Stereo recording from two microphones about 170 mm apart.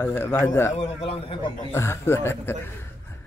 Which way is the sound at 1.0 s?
35° left (ahead or behind).